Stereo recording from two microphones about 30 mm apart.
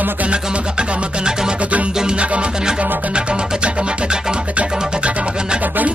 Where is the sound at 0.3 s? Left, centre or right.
Right.